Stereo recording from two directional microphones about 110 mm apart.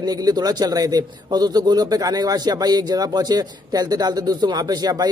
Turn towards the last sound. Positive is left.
turn(degrees=-35)  # may be behind; listen again after turning